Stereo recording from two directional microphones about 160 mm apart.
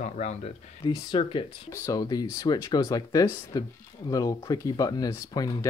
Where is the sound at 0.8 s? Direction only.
30° left (ahead or behind).